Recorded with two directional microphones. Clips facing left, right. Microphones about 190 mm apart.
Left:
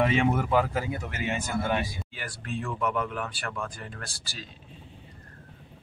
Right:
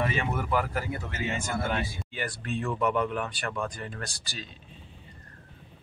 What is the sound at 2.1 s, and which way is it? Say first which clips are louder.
Speech: right 3 dB; centre (ahead or behind).